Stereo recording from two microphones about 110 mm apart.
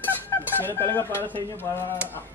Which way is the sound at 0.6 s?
20° left (ahead or behind).